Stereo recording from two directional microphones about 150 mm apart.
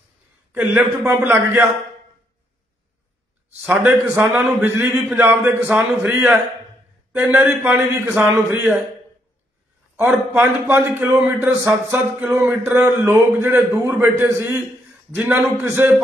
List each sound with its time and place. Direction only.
0.5 s a man's voice: 15° right (ahead or behind)
3.8 s a man's voice: 15° right (ahead or behind)
4.3 s a man's voice: 5° right (ahead or behind)
9.9 s a man's voice: 15° right (ahead or behind)
12.2 s speech: 5° right (ahead or behind)
12.7 s a man's voice: 15° right (ahead or behind)